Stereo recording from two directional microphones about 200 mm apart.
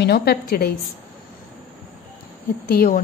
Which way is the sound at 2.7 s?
45° left (ahead or behind).